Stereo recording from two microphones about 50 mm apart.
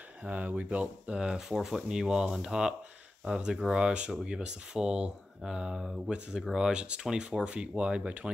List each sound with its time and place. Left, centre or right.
0.2 s speech: right
1.1 s speech: centre